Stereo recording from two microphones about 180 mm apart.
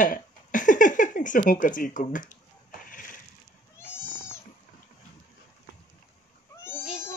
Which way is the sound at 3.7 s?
15° left (ahead or behind).